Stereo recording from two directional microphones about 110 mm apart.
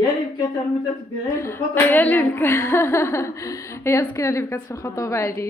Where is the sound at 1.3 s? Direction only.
20° left (ahead or behind).